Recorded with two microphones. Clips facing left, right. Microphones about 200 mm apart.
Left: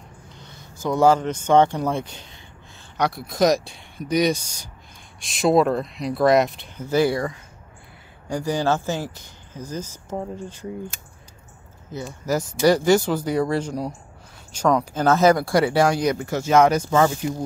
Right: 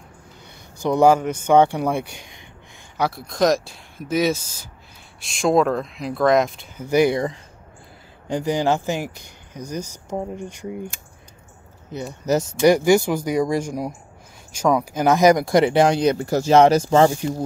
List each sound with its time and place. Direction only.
0.4 s speech: 15° right (ahead or behind)
3.0 s speech: centre (ahead or behind)
6.8 s speech: 15° right (ahead or behind); by 17.1 s 35° right (ahead or behind)